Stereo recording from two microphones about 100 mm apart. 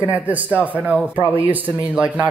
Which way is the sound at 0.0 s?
15° right (ahead or behind).